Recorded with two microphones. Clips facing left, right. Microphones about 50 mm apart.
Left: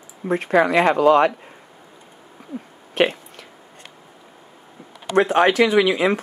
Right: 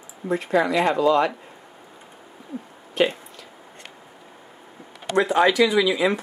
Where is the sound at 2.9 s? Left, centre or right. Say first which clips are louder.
Left 2 dB; left.